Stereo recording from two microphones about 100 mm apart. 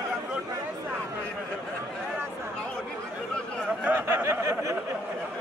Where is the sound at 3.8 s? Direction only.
20° right (ahead or behind).